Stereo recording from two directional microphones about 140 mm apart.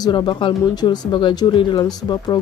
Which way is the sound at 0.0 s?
35° left (ahead or behind).